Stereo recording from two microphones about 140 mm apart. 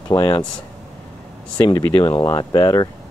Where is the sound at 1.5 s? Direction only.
30° left (ahead or behind).